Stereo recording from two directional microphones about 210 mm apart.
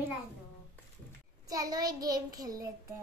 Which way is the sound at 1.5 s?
15° right (ahead or behind).